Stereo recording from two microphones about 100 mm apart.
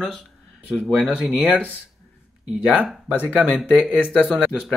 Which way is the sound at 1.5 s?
15° left (ahead or behind).